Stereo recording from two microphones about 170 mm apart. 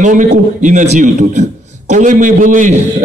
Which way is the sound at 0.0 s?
50° right (ahead or behind).